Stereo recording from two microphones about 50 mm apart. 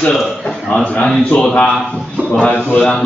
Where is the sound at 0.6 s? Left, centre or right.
Left.